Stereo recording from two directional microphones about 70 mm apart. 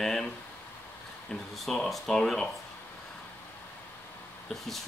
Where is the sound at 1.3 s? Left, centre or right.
Centre.